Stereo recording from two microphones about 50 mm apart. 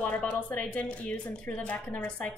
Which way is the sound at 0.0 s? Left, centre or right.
Left.